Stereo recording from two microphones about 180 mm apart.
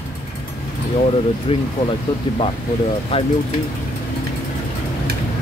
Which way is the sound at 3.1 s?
30° left (ahead or behind).